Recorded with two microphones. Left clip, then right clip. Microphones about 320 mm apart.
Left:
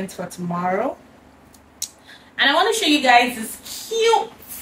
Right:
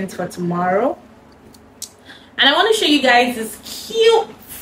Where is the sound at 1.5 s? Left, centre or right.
Centre.